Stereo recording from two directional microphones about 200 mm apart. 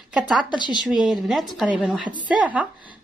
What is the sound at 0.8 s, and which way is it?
A woman's voice, centre (ahead or behind).